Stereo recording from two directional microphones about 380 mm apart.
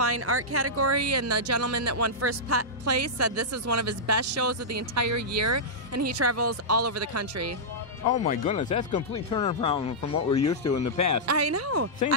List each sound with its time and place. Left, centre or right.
0.0 s speech: right
8.1 s speech: centre
10.7 s speech: left
11.2 s speech: right